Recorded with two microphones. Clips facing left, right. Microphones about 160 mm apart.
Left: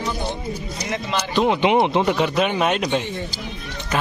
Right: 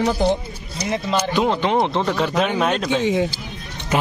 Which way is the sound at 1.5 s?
15° left (ahead or behind).